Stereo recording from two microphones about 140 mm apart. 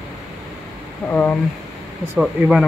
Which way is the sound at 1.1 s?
10° left (ahead or behind).